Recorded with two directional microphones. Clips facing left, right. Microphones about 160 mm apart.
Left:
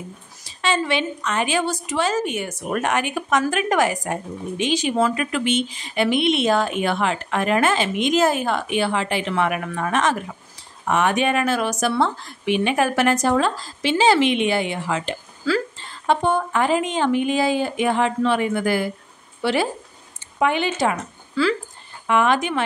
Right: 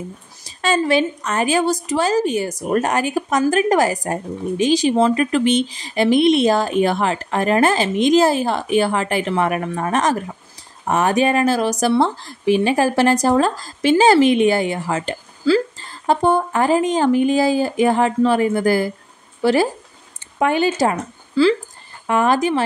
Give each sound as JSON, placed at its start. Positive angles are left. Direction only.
{"t": 0.5, "sound": "a woman's voice", "side_deg": -40}
{"t": 9.3, "sound": "a woman's voice", "side_deg": -35}
{"t": 15.5, "sound": "speech", "side_deg": -30}
{"t": 15.8, "sound": "a woman's voice", "side_deg": -40}